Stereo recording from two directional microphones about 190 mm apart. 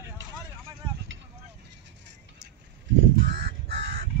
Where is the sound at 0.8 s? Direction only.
25° right (ahead or behind).